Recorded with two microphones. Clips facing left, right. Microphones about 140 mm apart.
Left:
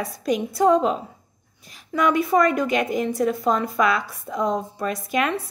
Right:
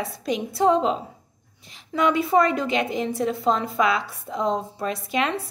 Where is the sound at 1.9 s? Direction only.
25° right (ahead or behind).